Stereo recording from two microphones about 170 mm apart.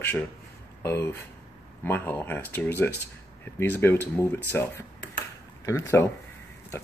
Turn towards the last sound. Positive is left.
turn(degrees=15)  # may be behind; listen again after turning